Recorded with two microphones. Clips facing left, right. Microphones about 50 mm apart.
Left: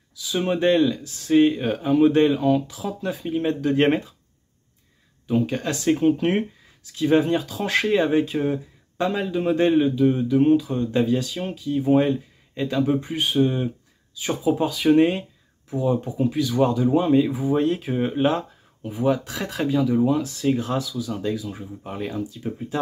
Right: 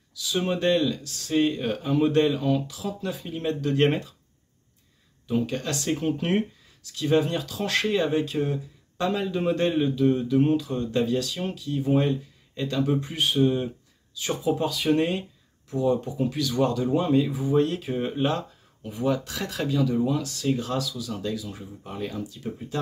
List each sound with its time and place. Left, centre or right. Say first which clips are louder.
0.1 s speech: left 3 dB; centre
5.3 s speech: left 4 dB; centre